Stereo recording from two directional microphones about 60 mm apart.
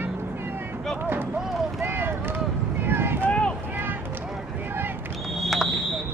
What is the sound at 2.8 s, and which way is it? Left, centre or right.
Vehicle, right.